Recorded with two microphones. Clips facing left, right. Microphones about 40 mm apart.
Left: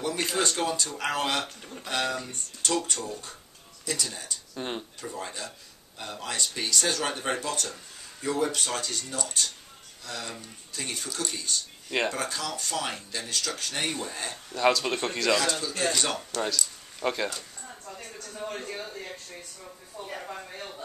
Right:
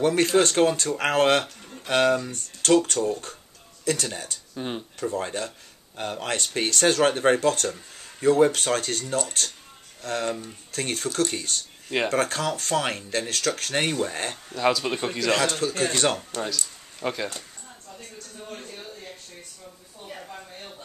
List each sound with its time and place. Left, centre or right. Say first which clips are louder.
0.0 s speech: right 8 dB; right
4.6 s speech: right 2 dB; centre
5.2 s speech: right 7 dB; right
14.5 s speech: even; centre
15.3 s speech: right 3 dB; right
16.3 s speech: even; centre
17.9 s a sound: even; left
20.1 s a sound: left 1 dB; left